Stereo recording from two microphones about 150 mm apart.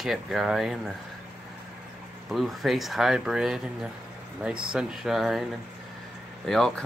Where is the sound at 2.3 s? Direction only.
Centre (ahead or behind).